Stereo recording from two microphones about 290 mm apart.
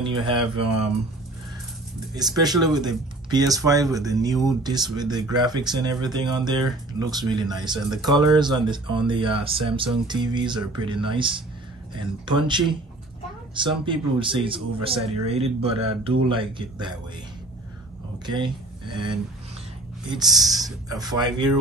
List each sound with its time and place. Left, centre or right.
0.0 s speech: centre
2.1 s speech: centre
18.2 s speech: centre
20.4 s speech: centre